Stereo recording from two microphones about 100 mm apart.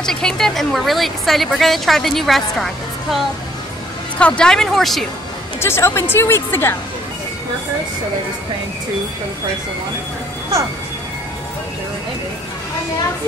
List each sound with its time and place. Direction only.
0.0 s a woman's voice: 5° left (ahead or behind)
4.2 s a woman's voice: 10° left (ahead or behind)
5.6 s speech: 25° left (ahead or behind)